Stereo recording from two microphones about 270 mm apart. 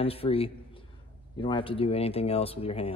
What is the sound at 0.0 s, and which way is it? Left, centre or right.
Speech, left.